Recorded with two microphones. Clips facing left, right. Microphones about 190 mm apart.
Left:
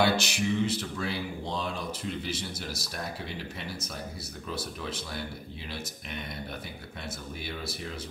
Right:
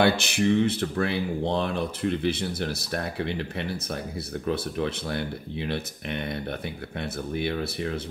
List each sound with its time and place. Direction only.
0.0 s speech: 60° right (ahead or behind)